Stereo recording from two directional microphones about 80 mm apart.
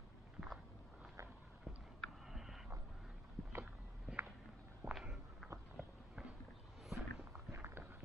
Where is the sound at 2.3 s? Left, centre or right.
Centre.